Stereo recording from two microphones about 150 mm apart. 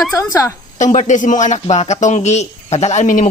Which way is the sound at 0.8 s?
55° left (ahead or behind).